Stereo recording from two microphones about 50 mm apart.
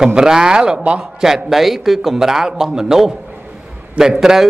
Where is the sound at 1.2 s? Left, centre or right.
Centre.